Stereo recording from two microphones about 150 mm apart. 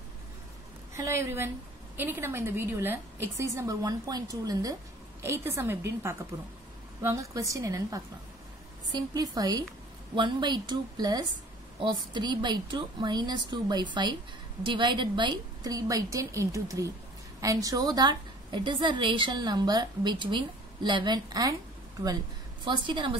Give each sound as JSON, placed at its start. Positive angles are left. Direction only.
{"t": 0.9, "sound": "a woman's voice", "side_deg": -20}
{"t": 22.7, "sound": "a woman's voice", "side_deg": -35}